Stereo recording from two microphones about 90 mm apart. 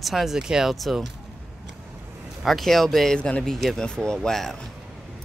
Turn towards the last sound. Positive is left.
turn(degrees=5)  # may be behind; listen again after turning